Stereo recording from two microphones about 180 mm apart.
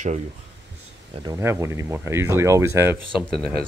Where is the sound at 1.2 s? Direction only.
15° right (ahead or behind).